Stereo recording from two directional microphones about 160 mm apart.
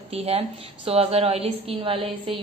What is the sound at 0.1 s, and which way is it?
A woman's voice, 40° right (ahead or behind).